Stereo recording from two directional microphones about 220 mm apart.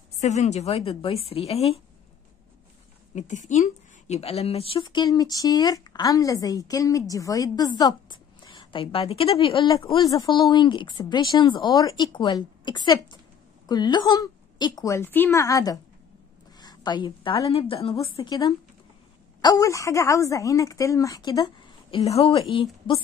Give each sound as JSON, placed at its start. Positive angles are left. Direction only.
{"t": 0.2, "sound": "speech", "side_deg": 30}
{"t": 3.2, "sound": "a woman's voice", "side_deg": 35}